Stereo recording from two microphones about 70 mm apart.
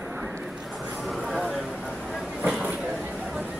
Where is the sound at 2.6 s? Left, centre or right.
Centre.